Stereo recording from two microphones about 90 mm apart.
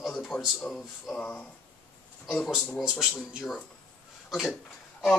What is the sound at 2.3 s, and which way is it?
Speech, 5° left (ahead or behind).